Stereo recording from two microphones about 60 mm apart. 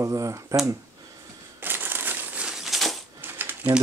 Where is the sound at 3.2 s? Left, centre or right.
Right.